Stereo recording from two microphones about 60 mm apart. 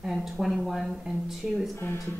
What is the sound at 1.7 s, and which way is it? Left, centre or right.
Speech, left.